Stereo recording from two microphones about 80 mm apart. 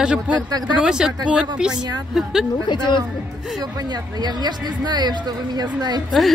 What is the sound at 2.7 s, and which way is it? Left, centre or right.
Speech, left.